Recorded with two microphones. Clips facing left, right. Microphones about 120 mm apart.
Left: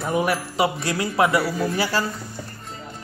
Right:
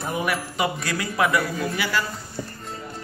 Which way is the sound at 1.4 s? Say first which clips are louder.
Left 3 dB; 10° left (ahead or behind).